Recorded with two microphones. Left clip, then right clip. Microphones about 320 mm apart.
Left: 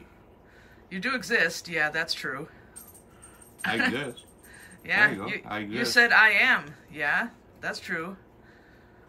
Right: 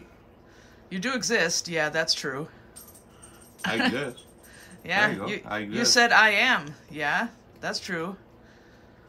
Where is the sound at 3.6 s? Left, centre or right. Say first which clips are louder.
Even; centre.